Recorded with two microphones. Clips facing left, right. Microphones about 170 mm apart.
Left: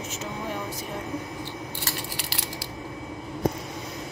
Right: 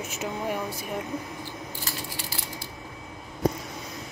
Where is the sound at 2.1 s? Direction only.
80° left.